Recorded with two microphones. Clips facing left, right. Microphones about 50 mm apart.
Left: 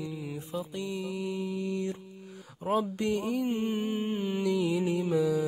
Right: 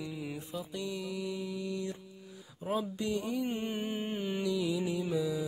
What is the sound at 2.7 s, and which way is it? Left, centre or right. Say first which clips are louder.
Speech: left 5 dB; centre.